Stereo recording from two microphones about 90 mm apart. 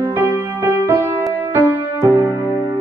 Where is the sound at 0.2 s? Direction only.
20° right (ahead or behind).